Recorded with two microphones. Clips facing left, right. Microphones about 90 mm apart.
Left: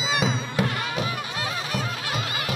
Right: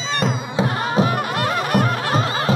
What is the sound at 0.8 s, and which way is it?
Music, 35° right (ahead or behind).